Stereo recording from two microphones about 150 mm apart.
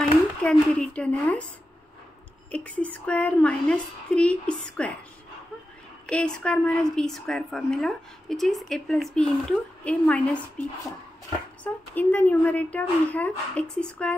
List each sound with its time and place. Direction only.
0.4 s a woman's voice: 10° left (ahead or behind)
2.5 s a woman's voice: 10° left (ahead or behind)
6.0 s a woman's voice: 5° left (ahead or behind)
11.6 s a woman's voice: 10° left (ahead or behind)